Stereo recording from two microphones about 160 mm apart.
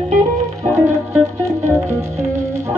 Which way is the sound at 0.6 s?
15° right (ahead or behind).